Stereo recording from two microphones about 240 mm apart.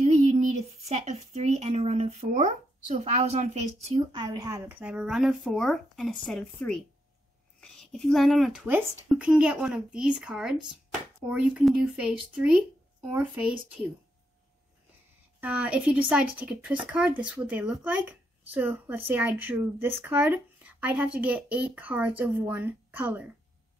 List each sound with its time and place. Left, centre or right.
0.0 s a woman's voice: right; by 13.5 s centre
15.4 s a woman's voice: centre